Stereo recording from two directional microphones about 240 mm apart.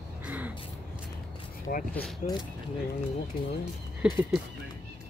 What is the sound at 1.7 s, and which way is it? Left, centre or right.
Speech, left.